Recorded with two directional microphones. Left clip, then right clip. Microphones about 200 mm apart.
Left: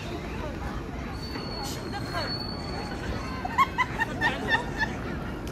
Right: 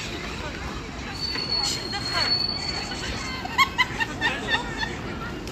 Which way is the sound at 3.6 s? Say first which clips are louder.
Right 3 dB; 40° left (ahead or behind).